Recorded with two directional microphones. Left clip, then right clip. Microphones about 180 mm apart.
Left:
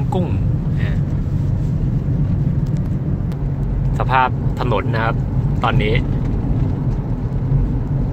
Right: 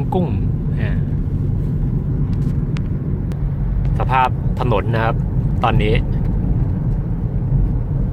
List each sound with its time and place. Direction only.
4.1 s speech: 15° right (ahead or behind)